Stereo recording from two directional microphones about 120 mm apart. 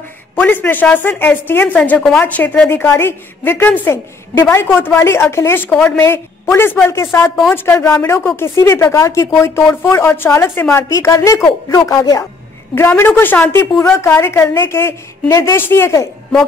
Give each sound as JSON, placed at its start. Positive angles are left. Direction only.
{"t": 0.4, "sound": "a woman's voice", "side_deg": 15}